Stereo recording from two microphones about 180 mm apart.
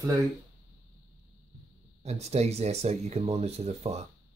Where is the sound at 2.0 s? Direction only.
35° right (ahead or behind).